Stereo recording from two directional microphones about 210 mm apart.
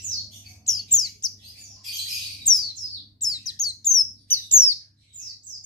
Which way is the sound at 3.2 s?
15° left (ahead or behind).